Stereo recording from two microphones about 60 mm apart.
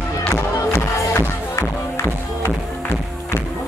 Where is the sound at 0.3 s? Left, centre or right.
Left.